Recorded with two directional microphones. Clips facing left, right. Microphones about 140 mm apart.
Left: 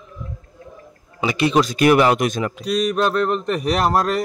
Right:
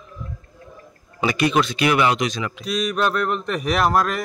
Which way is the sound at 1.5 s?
45° left (ahead or behind).